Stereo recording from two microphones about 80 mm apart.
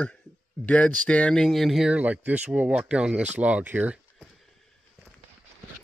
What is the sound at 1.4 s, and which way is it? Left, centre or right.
Speech, centre.